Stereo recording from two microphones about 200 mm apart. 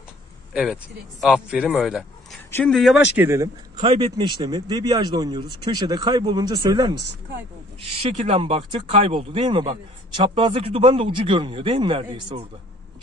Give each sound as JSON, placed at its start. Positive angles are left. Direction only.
{"t": 0.5, "sound": "speech", "side_deg": 0}
{"t": 3.2, "sound": "speech", "side_deg": -15}
{"t": 8.0, "sound": "speech", "side_deg": -30}